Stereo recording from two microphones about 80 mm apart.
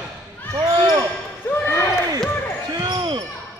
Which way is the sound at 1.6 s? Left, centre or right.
Left.